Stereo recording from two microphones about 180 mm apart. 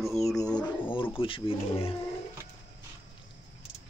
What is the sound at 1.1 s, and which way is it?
Speech, 30° left (ahead or behind).